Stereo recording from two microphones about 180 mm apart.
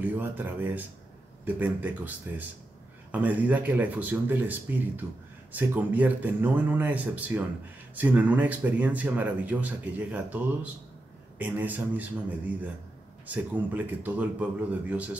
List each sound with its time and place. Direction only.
0.0 s speech: 10° right (ahead or behind)
13.3 s speech: 10° right (ahead or behind)